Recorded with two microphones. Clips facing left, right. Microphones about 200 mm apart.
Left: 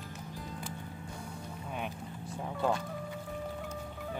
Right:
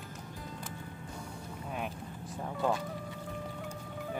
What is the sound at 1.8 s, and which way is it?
Vehicle, centre (ahead or behind).